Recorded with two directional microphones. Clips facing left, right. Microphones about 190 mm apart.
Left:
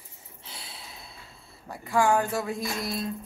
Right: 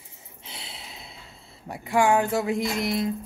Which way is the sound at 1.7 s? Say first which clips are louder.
Right 2 dB; 20° right (ahead or behind).